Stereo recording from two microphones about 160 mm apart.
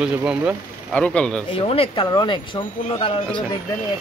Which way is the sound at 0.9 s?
5° left (ahead or behind).